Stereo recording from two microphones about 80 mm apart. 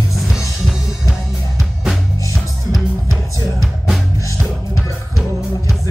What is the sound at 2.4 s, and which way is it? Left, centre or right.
Music, centre.